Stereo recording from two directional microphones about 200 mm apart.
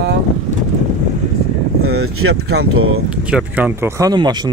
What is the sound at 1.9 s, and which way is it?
Speech, 90° right.